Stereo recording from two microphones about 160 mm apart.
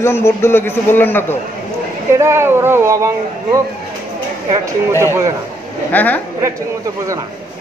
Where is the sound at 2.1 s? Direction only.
15° right (ahead or behind).